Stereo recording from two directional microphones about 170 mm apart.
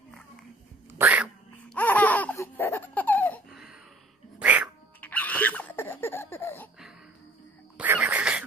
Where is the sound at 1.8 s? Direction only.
10° left (ahead or behind).